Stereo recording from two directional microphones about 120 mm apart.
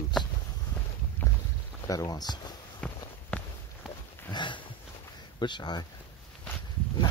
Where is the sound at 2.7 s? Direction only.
10° left (ahead or behind).